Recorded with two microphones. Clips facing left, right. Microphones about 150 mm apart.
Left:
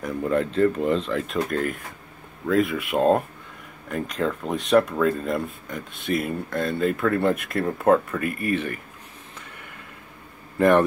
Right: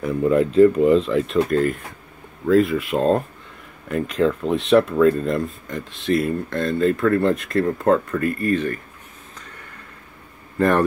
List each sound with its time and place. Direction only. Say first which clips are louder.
0.0 s speech: right 6 dB; 5° right (ahead or behind); by 8.8 s 10° left (ahead or behind)
10.6 s a man's voice: even; 15° left (ahead or behind)